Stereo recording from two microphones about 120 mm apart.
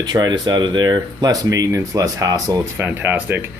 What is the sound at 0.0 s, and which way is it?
Speech, 35° right (ahead or behind).